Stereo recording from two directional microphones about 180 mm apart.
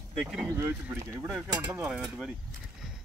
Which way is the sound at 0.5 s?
15° right (ahead or behind).